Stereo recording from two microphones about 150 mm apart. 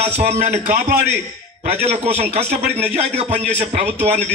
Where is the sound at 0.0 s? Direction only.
45° right (ahead or behind).